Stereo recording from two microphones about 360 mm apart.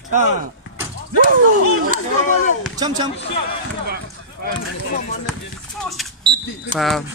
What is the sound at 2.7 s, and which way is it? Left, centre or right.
Speech, centre.